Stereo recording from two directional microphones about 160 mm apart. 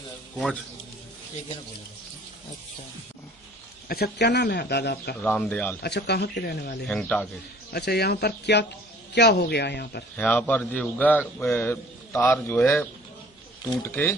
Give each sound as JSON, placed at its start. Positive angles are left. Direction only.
{"t": 3.9, "sound": "speech", "side_deg": 80}
{"t": 5.2, "sound": "a man's voice", "side_deg": 5}
{"t": 5.8, "sound": "speech", "side_deg": 90}
{"t": 6.9, "sound": "speech", "side_deg": 5}
{"t": 7.7, "sound": "speech", "side_deg": 85}
{"t": 10.1, "sound": "a man's voice", "side_deg": 10}
{"t": 13.8, "sound": "a man's voice", "side_deg": 15}